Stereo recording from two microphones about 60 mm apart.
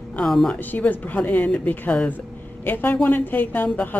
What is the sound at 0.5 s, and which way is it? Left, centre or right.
A woman's voice, left.